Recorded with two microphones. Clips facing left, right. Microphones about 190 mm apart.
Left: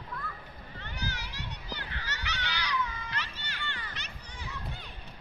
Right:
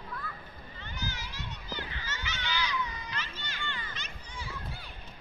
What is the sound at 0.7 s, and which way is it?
Children playing, 70° left (ahead or behind).